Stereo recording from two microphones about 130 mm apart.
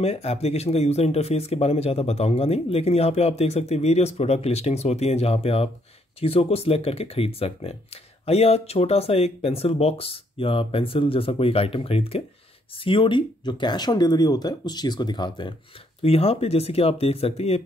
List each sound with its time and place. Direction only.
0.0 s speech: 55° left (ahead or behind); by 15.5 s 35° left (ahead or behind)
16.0 s speech: 50° left (ahead or behind)